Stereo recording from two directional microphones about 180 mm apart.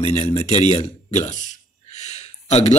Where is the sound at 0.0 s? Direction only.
35° left (ahead or behind).